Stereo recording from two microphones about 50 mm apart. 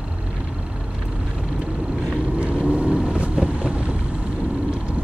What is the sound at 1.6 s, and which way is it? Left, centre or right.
Vehicle, centre.